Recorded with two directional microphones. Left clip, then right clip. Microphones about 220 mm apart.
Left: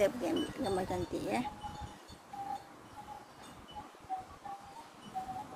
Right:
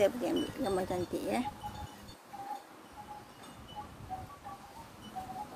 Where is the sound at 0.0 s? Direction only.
5° right (ahead or behind).